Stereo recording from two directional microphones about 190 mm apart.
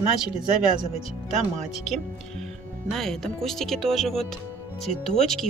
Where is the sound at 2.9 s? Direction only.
Centre (ahead or behind).